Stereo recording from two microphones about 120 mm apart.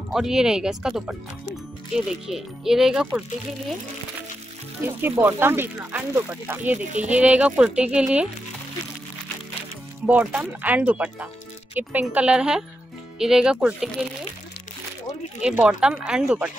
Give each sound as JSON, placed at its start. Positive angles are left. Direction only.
{"t": 0.1, "sound": "speech", "side_deg": -5}
{"t": 4.8, "sound": "speech", "side_deg": -20}
{"t": 10.0, "sound": "speech", "side_deg": -10}
{"t": 15.4, "sound": "speech", "side_deg": -10}